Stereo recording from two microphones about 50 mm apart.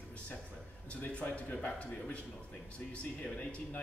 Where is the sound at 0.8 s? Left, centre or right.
Left.